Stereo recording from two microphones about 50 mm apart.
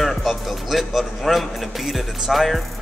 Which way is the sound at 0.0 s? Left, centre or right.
Centre.